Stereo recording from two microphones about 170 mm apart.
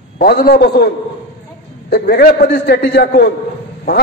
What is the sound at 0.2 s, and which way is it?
A man's voice, 65° left (ahead or behind).